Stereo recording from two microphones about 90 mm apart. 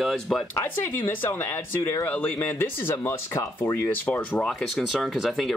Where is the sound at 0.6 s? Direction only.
25° left (ahead or behind).